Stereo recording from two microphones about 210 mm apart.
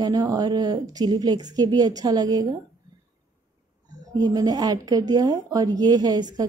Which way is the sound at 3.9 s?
20° right (ahead or behind).